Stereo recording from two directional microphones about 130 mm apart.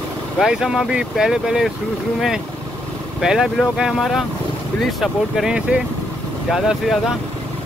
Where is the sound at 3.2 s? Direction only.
5° right (ahead or behind).